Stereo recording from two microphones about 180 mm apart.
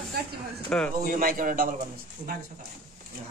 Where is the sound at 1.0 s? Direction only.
50° right (ahead or behind).